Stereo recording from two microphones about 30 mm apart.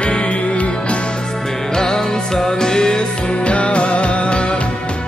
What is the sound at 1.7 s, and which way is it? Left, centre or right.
Music, left.